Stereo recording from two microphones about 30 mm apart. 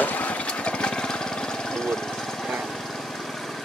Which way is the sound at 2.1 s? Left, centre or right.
Centre.